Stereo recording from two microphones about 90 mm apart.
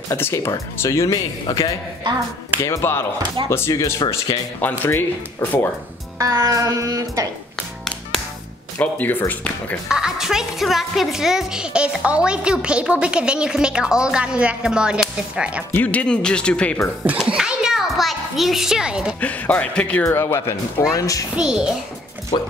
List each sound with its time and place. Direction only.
0.1 s speech: 35° left (ahead or behind)
4.6 s speech: 20° left (ahead or behind)
6.1 s speech: 35° right (ahead or behind)
8.7 s speech: 20° left (ahead or behind)
9.8 s speech: 5° right (ahead or behind)
15.7 s speech: 15° left (ahead or behind)
17.2 s children playing: 10° right (ahead or behind)
19.1 s speech: 15° left (ahead or behind)
20.1 s speech: 30° left (ahead or behind)
21.4 s speech: 10° right (ahead or behind)